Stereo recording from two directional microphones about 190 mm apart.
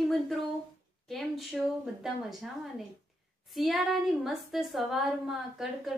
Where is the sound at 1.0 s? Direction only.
Centre (ahead or behind).